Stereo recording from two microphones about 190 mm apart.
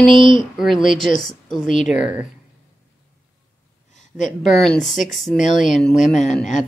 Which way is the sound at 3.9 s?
40° left (ahead or behind).